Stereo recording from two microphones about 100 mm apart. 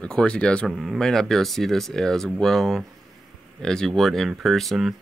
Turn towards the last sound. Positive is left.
turn(degrees=0)  # may be behind; listen again after turning